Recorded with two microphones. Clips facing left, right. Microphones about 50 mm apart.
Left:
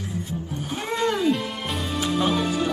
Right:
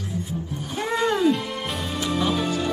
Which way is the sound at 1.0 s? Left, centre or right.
Centre.